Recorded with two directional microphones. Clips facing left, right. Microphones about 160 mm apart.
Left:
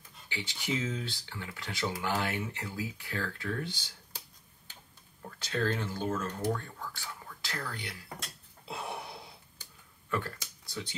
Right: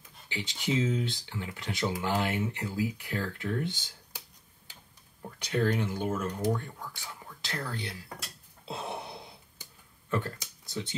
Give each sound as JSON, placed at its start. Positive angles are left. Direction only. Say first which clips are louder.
{"t": 0.3, "sound": "speech", "louder": "right 4 dB", "side_deg": -20}
{"t": 5.2, "sound": "speech", "louder": "right 4 dB", "side_deg": -15}
{"t": 8.6, "sound": "a sound", "louder": "right 2 dB", "side_deg": -25}